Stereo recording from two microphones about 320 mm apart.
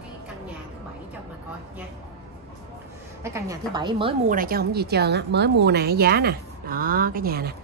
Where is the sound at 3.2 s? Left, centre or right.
Centre.